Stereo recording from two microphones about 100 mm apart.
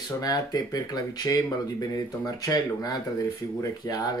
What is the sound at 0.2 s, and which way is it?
Speech, 40° left (ahead or behind).